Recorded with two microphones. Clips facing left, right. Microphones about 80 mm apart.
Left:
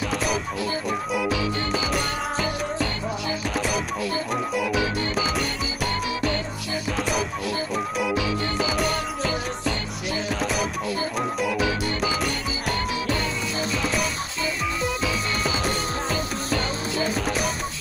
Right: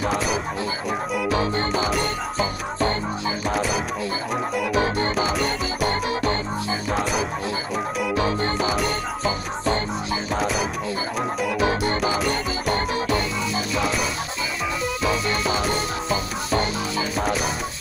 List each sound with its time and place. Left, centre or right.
0.1 s music: centre
1.3 s music: right
3.5 s music: centre
4.7 s music: right
5.3 s music: centre
7.0 s music: centre
8.2 s music: right
10.4 s music: centre
11.6 s music: right
15.0 s music: right